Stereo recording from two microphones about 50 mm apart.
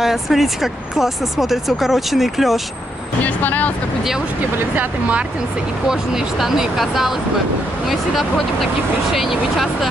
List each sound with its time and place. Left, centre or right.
0.0 s speech: centre
3.2 s speech: left
5.9 s speech: centre